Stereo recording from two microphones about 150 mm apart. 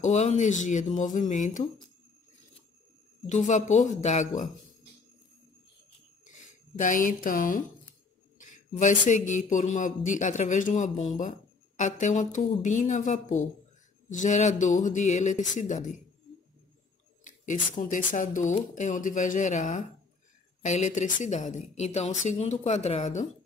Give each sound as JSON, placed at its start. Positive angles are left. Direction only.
{"t": 0.0, "sound": "a man's voice", "side_deg": 50}
{"t": 3.3, "sound": "a woman's voice", "side_deg": 50}
{"t": 6.3, "sound": "speech", "side_deg": 60}
{"t": 8.7, "sound": "a man's voice", "side_deg": 55}
{"t": 17.5, "sound": "a man's voice", "side_deg": 60}